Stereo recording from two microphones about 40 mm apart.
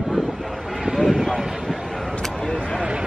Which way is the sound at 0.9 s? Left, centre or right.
Centre.